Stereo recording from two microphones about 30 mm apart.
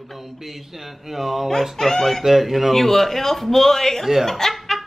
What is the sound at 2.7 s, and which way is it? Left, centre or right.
A man's voice, centre.